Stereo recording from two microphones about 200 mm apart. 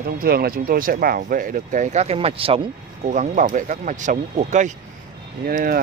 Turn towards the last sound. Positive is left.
turn(degrees=-40)  # may be behind; listen again after turning